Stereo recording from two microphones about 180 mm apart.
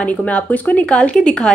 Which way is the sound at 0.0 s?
10° left (ahead or behind).